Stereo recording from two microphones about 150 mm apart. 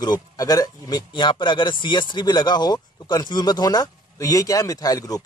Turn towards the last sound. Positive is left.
turn(degrees=25)  # may be behind; listen again after turning